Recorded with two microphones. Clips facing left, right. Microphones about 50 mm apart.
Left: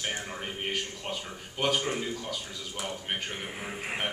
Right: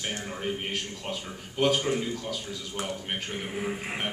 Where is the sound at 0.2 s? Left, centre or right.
Centre.